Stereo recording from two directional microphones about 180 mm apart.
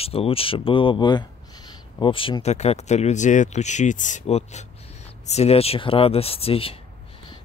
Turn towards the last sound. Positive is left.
turn(degrees=30)  # may be behind; listen again after turning